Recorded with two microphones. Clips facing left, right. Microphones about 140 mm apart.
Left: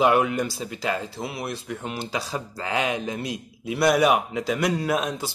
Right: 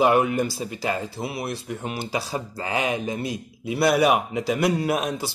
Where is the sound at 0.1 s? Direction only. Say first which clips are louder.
Right 1 dB; 5° right (ahead or behind).